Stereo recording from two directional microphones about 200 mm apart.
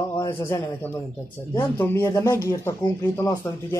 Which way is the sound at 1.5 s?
10° left (ahead or behind).